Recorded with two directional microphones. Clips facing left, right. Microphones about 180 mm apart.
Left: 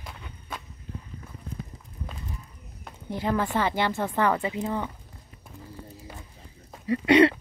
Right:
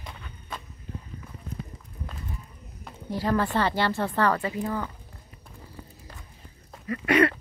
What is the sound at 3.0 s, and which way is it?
Speech, 20° left (ahead or behind).